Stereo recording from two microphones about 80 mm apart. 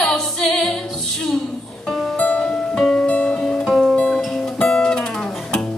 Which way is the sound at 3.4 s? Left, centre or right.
Centre.